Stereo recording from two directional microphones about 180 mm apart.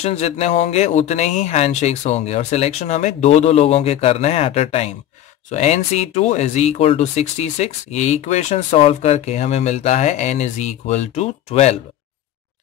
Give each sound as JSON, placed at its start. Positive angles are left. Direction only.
{"t": 0.0, "sound": "speech", "side_deg": 35}